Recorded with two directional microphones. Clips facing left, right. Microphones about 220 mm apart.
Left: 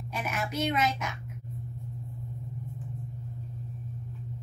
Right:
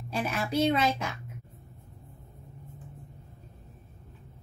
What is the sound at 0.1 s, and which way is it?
A woman's voice, 30° right (ahead or behind).